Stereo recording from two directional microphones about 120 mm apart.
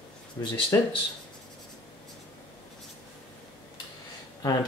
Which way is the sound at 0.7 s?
25° left (ahead or behind).